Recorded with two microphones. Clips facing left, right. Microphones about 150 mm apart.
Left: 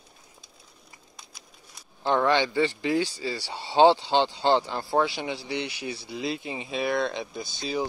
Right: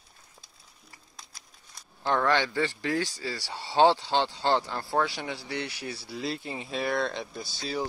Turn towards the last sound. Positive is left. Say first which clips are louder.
# left 3 dB
turn(degrees=20)  # may be behind; listen again after turning